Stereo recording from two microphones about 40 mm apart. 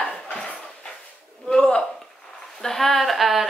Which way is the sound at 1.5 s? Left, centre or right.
Left.